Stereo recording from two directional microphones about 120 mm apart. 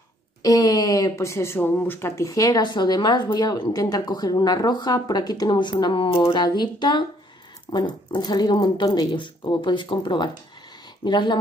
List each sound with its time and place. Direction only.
0.4 s speech: 30° left (ahead or behind)